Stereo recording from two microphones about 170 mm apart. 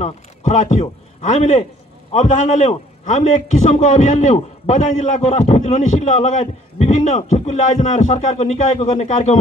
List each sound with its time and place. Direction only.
0.0 s a man's voice: 45° left (ahead or behind)